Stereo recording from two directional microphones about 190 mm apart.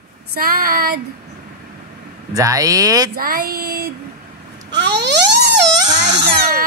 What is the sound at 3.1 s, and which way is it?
Female singing, 50° right (ahead or behind).